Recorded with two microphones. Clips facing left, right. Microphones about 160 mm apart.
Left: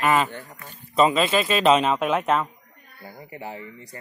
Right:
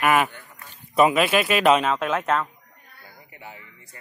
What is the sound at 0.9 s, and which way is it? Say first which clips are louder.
Speech: right 1 dB; 10° right (ahead or behind).